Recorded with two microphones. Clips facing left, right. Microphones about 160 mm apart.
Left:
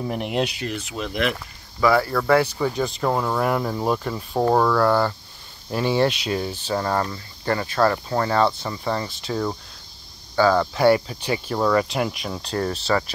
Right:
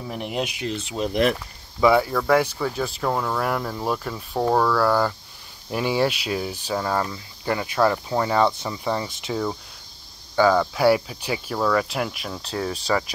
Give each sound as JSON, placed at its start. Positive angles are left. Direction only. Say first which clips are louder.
{"t": 0.1, "sound": "speech", "louder": "left 2 dB", "side_deg": 0}
{"t": 0.7, "sound": "speech", "louder": "right 5 dB", "side_deg": -30}
{"t": 1.8, "sound": "speech", "louder": "right 1 dB", "side_deg": -15}
{"t": 11.5, "sound": "speech", "louder": "left 2 dB", "side_deg": 5}